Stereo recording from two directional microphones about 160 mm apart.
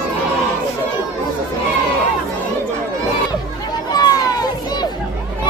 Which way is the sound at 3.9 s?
25° left (ahead or behind).